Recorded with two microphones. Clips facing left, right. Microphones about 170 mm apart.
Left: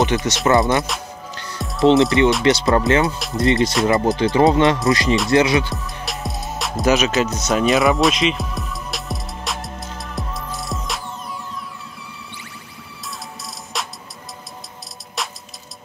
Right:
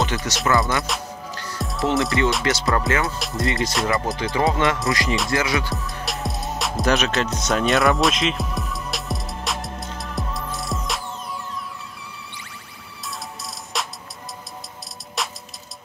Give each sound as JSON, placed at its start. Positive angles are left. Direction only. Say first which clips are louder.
{"t": 0.0, "sound": "speech", "louder": "left 5 dB", "side_deg": 20}
{"t": 1.6, "sound": "music", "louder": "left 6 dB", "side_deg": 0}
{"t": 1.9, "sound": "speech", "louder": "left 7 dB", "side_deg": 20}
{"t": 3.2, "sound": "music", "louder": "left 3 dB", "side_deg": 0}
{"t": 3.4, "sound": "speech", "louder": "left 7 dB", "side_deg": 20}
{"t": 5.8, "sound": "music", "louder": "even", "side_deg": 0}
{"t": 13.7, "sound": "music", "louder": "even", "side_deg": 0}
{"t": 15.2, "sound": "music", "louder": "even", "side_deg": 0}